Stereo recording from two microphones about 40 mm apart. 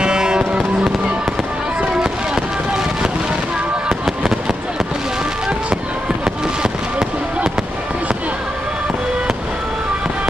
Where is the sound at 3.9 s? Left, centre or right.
Centre.